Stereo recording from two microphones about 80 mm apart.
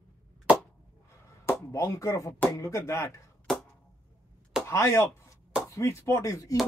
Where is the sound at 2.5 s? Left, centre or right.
Left.